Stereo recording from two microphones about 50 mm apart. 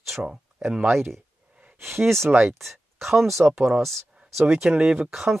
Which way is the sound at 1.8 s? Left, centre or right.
Right.